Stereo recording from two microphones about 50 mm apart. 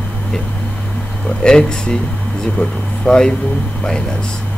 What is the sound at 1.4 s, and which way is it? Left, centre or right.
Speech, centre.